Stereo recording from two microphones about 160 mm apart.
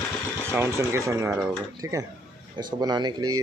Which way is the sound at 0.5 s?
15° right (ahead or behind).